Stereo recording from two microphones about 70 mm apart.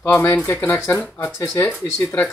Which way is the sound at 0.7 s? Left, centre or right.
Left.